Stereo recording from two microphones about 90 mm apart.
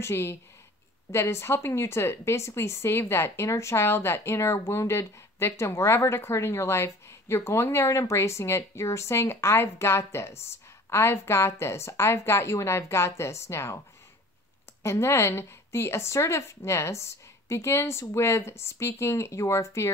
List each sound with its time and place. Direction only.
0.0 s speech: 30° left (ahead or behind)
14.8 s speech: 30° left (ahead or behind)